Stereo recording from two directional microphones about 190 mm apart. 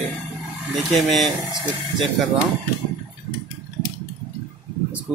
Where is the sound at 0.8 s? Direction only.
Centre (ahead or behind).